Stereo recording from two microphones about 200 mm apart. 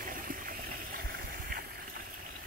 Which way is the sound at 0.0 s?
45° right (ahead or behind).